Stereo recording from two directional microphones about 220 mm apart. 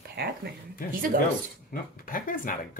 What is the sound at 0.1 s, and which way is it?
Speech, 45° right (ahead or behind).